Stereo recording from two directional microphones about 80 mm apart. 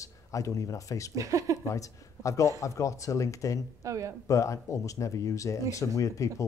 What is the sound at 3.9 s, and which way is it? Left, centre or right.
Speech, right.